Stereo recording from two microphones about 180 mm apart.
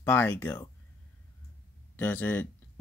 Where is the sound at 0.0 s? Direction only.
10° left (ahead or behind).